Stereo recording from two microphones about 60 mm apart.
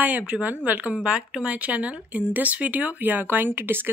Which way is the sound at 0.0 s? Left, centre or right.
Right.